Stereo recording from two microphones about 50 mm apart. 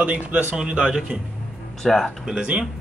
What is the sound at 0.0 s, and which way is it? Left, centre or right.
Speech, right.